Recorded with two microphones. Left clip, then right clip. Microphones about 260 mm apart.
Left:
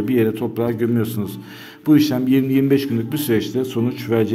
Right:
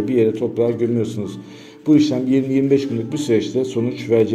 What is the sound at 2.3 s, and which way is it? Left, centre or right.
A man's voice, left.